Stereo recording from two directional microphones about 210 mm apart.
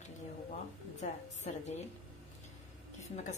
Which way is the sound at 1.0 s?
35° left (ahead or behind).